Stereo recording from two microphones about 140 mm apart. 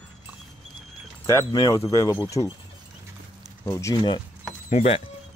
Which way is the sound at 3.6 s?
20° left (ahead or behind).